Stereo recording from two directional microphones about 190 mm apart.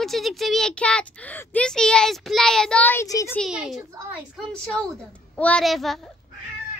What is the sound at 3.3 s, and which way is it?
Speech, centre (ahead or behind).